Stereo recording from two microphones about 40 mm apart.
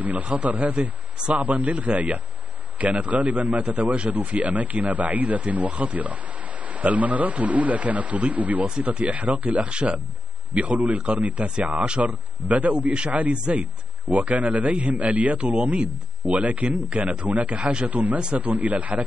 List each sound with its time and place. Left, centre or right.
0.0 s a man's voice: right
11.7 s speech: right
12.0 s a man's voice: right